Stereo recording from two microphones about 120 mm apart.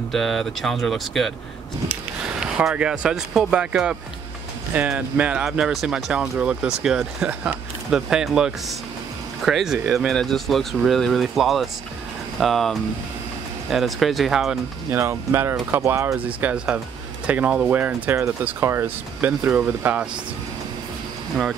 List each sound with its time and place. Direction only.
0.1 s speech: centre (ahead or behind)
2.4 s speech: 5° right (ahead or behind)
14.9 s speech: 20° right (ahead or behind)
16.3 s speech: 10° right (ahead or behind)